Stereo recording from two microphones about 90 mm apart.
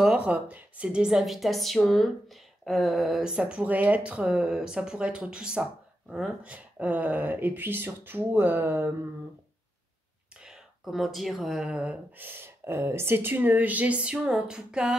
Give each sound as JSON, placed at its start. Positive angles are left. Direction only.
{"t": 0.0, "sound": "a woman's voice", "side_deg": -15}
{"t": 10.4, "sound": "speech", "side_deg": -5}
{"t": 12.2, "sound": "speech", "side_deg": -25}